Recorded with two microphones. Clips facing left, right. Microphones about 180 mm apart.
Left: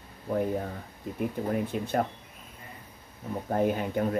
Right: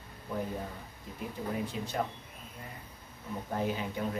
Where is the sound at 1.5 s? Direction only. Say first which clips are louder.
Left 4 dB; 55° left (ahead or behind).